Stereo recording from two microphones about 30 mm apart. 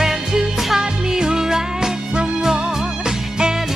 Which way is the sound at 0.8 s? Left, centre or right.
Right.